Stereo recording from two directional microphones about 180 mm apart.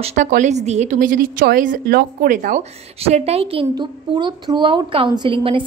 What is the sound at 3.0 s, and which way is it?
A woman's voice, 35° right (ahead or behind).